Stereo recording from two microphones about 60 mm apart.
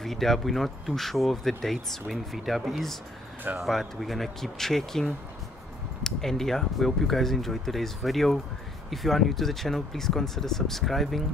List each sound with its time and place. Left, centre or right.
0.0 s speech: centre